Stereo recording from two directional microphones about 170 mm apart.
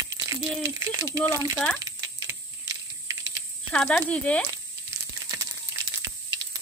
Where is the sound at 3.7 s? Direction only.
5° left (ahead or behind).